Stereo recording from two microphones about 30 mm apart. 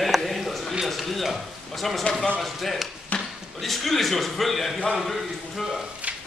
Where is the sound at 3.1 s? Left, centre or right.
Left.